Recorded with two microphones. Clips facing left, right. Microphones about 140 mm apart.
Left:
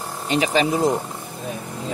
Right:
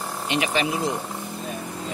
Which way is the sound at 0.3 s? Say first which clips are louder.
Left 5 dB; 35° left (ahead or behind).